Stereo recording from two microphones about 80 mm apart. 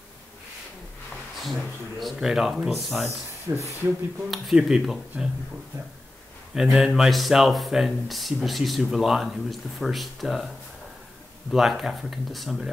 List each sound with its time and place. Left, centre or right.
1.4 s speech: centre
3.5 s speech: right
4.3 s speech: centre
6.5 s a man's voice: centre
11.5 s speech: centre